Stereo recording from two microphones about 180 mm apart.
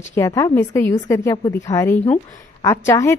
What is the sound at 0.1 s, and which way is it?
A woman's voice, 15° left (ahead or behind).